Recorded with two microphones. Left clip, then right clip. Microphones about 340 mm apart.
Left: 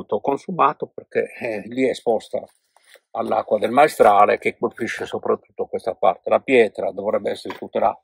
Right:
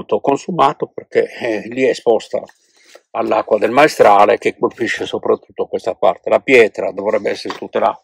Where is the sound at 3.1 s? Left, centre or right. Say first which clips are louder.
Right 6 dB; right.